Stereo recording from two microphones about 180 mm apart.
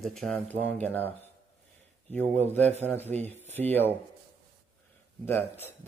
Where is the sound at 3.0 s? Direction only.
40° right (ahead or behind).